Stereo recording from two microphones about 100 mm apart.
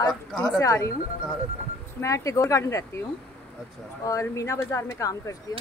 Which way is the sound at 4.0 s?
30° left (ahead or behind).